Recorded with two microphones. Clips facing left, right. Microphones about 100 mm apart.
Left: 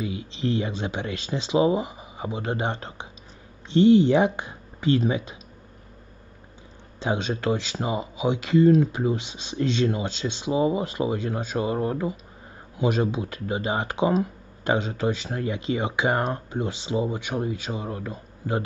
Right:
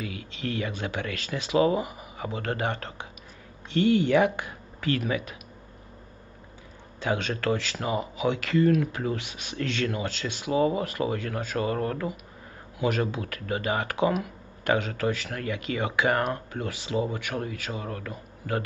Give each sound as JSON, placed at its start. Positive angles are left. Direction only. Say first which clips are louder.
{"t": 0.0, "sound": "speech", "louder": "left 5 dB", "side_deg": 25}
{"t": 7.0, "sound": "speech", "louder": "left 2 dB", "side_deg": 20}